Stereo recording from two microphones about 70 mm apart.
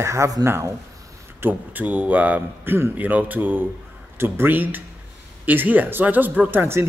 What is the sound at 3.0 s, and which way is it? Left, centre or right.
A man's voice, right.